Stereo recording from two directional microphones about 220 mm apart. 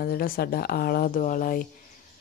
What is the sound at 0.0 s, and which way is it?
Speech, 40° left (ahead or behind).